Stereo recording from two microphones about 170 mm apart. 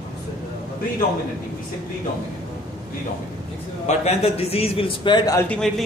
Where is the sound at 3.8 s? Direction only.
40° left (ahead or behind).